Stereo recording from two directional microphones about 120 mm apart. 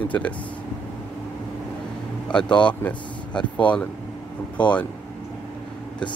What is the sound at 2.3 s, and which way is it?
Speech, 10° left (ahead or behind).